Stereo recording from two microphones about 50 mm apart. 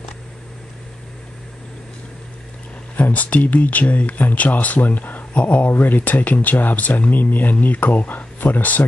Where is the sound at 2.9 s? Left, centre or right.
Left.